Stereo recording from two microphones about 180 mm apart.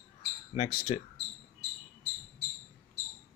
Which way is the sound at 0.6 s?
30° left (ahead or behind).